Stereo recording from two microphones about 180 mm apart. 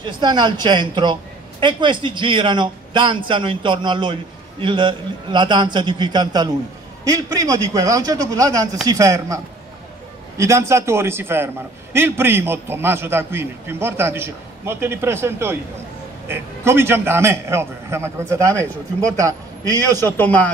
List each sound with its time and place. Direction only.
0.0 s a man's voice: 25° right (ahead or behind)
20.0 s a man's voice: 10° left (ahead or behind)